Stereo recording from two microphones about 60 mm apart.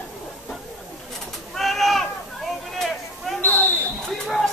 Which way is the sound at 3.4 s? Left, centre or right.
Left.